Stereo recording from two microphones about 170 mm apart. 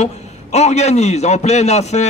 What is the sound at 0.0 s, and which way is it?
A man's voice, 40° left (ahead or behind).